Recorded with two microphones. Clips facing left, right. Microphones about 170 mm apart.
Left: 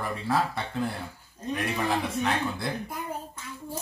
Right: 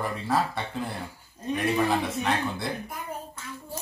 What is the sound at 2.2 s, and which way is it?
Speech, centre (ahead or behind).